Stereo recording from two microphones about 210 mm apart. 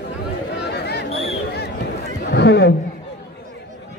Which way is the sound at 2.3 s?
55° left (ahead or behind).